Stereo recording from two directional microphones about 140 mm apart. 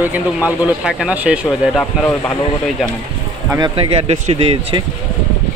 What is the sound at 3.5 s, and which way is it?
Speech, 30° right (ahead or behind).